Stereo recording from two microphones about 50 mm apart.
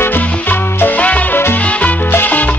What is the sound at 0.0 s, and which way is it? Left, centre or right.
Music, left.